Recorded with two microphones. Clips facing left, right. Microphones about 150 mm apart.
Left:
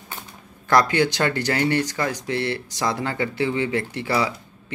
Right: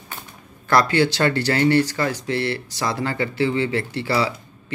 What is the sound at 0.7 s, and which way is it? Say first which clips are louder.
Speech: right 1 dB; 15° left (ahead or behind).